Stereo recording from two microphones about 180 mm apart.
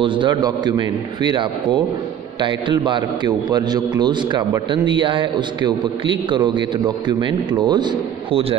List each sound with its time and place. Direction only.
0.0 s a man's voice: 25° right (ahead or behind)